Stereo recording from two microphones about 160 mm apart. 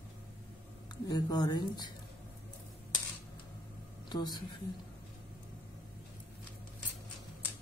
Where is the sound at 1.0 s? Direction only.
25° left (ahead or behind).